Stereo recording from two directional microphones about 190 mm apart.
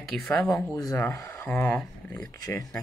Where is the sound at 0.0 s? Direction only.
Centre (ahead or behind).